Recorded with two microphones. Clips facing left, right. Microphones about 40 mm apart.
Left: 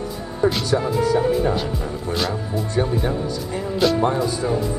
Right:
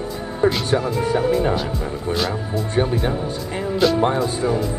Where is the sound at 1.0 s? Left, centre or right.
Right.